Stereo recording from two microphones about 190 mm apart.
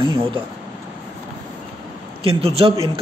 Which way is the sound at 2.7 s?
20° right (ahead or behind).